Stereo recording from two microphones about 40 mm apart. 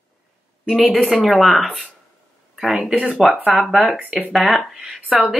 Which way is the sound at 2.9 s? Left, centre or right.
Right.